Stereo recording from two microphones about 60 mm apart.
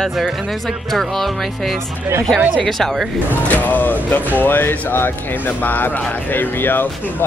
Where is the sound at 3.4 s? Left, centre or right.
Left.